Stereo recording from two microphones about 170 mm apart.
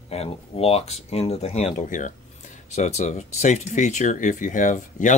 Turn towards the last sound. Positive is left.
turn(degrees=50)  # may be behind; listen again after turning